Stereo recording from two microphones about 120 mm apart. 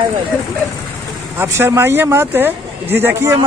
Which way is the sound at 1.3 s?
20° right (ahead or behind).